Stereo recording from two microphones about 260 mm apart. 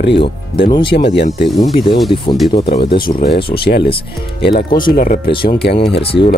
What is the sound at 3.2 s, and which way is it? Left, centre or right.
Speech, left.